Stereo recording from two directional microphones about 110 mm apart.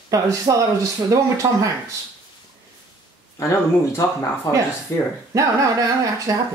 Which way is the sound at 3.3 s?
25° left (ahead or behind).